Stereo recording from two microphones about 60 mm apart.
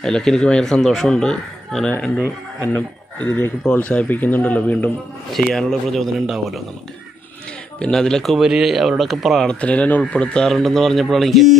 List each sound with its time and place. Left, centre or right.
0.0 s a man's voice: centre
2.7 s speech: left
5.3 s a man's voice: centre
6.1 s speech: centre
7.8 s a man's voice: centre
8.5 s speech: centre
9.5 s speech: left
10.5 s speech: centre